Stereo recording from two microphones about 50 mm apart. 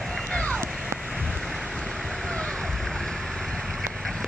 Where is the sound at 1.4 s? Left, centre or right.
Centre.